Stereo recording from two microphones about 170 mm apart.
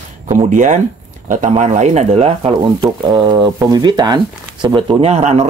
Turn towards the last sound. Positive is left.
turn(degrees=-40)  # may be behind; listen again after turning